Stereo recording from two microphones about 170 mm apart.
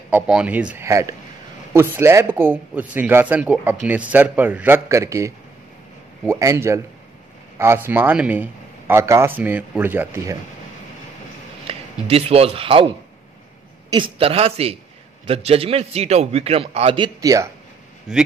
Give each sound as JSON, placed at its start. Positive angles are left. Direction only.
{"t": 0.1, "sound": "a man's voice", "side_deg": -5}
{"t": 0.8, "sound": "a man's voice", "side_deg": -20}
{"t": 11.6, "sound": "a man's voice", "side_deg": -35}
{"t": 18.1, "sound": "a man's voice", "side_deg": -5}